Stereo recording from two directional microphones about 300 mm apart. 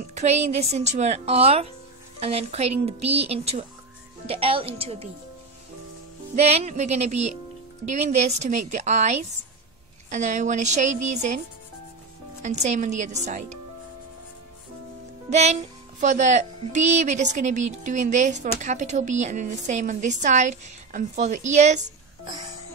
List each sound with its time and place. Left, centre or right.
0.0 s speech: right
6.3 s speech: right
15.2 s speech: right